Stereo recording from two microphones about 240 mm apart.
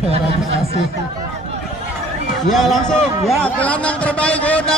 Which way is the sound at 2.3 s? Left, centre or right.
Centre.